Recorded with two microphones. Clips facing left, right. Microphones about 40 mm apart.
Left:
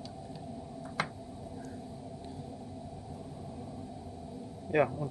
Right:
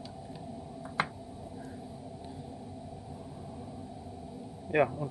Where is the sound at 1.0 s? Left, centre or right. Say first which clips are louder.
Right 3 dB; centre.